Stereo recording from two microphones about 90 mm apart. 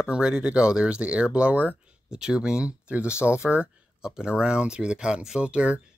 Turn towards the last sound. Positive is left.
turn(degrees=-10)  # may be behind; listen again after turning